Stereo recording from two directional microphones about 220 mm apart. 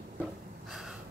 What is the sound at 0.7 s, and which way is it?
Gasp, centre (ahead or behind).